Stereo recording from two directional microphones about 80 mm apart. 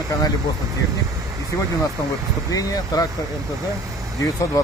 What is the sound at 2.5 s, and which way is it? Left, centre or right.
Speech, left.